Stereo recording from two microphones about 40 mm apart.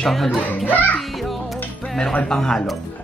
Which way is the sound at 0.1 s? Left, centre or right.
Centre.